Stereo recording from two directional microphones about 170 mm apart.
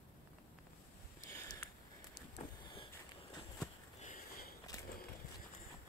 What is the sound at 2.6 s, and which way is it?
Vehicle, 30° left (ahead or behind).